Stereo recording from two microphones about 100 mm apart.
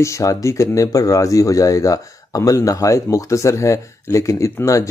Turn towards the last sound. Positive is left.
turn(degrees=30)  # may be behind; listen again after turning